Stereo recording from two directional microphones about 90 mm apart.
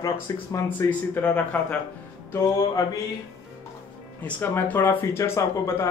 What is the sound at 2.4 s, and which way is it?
Speech, 40° left (ahead or behind).